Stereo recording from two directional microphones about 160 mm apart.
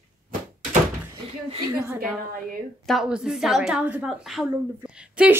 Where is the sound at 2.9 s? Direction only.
5° right (ahead or behind).